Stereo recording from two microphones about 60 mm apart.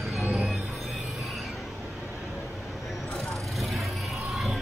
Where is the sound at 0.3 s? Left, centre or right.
Centre.